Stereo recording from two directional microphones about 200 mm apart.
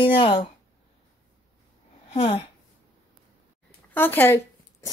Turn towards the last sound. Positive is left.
turn(degrees=10)  # may be behind; listen again after turning